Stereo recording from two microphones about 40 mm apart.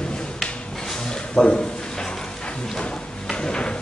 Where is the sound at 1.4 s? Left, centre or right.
Left.